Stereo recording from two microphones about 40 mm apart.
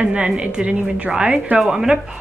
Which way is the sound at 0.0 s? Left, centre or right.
Right.